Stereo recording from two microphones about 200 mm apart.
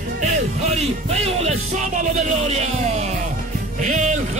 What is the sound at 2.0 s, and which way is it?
Music, 35° right (ahead or behind).